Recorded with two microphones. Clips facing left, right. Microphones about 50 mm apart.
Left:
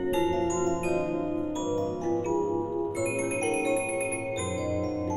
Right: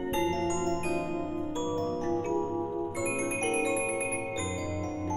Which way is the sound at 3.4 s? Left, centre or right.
Centre.